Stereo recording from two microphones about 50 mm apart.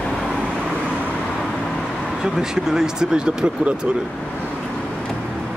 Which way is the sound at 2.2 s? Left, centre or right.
Centre.